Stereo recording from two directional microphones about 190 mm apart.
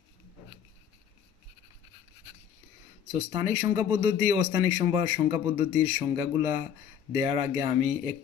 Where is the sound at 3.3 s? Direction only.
20° right (ahead or behind).